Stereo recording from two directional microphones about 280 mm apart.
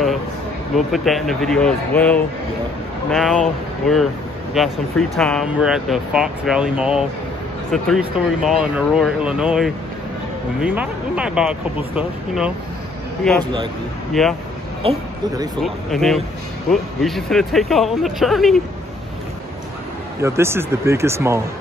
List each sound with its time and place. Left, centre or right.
0.7 s speech: centre
13.4 s speech: centre
14.2 s speech: centre
14.8 s speech: centre
15.6 s speech: centre
20.2 s speech: centre